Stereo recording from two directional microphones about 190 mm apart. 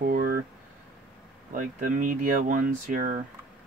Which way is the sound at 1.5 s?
45° right (ahead or behind).